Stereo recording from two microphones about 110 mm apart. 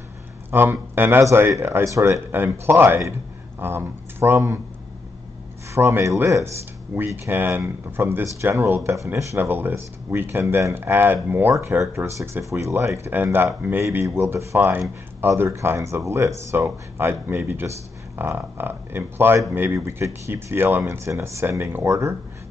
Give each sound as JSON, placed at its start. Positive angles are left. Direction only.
{"t": 0.5, "sound": "speech", "side_deg": -20}
{"t": 5.8, "sound": "speech", "side_deg": -25}